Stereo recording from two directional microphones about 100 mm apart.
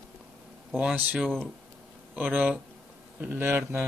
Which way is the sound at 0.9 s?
15° right (ahead or behind).